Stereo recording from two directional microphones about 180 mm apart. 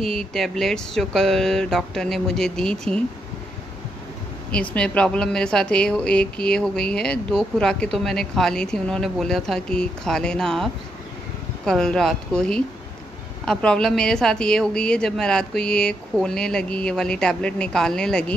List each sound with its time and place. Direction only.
0.0 s a woman's voice: centre (ahead or behind)
4.5 s a woman's voice: 5° left (ahead or behind)